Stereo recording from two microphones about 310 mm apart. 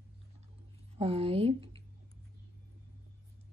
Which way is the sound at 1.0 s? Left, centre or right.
Centre.